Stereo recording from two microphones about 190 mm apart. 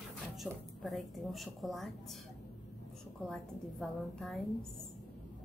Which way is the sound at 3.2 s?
Centre (ahead or behind).